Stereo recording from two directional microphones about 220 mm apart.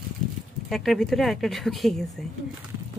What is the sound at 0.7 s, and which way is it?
Speech, centre (ahead or behind).